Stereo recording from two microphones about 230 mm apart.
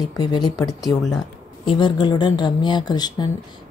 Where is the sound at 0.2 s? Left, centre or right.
Centre.